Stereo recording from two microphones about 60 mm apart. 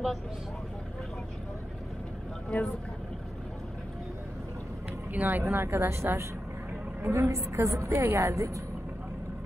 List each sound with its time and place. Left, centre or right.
2.5 s speech: centre
5.1 s speech: right
5.4 s a woman's voice: right
8.0 s a woman's voice: right